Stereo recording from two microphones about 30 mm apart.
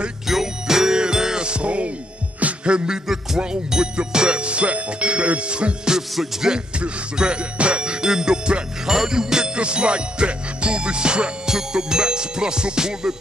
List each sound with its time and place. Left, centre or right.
0.3 s music: centre; by 5.8 s right
6.5 s music: right
8.8 s music: centre
9.6 s music: right
11.4 s music: right